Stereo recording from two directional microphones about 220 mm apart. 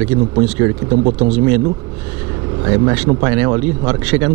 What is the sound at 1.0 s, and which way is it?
Speech, 30° right (ahead or behind).